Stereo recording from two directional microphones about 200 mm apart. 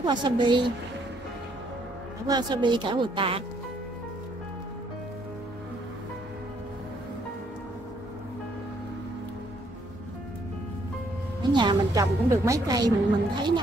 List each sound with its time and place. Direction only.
0.0 s a woman's voice: 20° right (ahead or behind)
2.2 s a woman's voice: 20° right (ahead or behind)
11.5 s a woman's voice: 20° right (ahead or behind)